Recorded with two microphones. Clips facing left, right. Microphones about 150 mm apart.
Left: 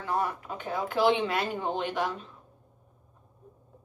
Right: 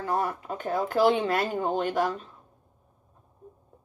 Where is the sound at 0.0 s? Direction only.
40° right (ahead or behind).